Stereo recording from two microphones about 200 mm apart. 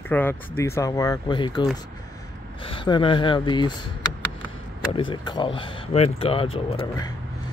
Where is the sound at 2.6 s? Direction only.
25° left (ahead or behind).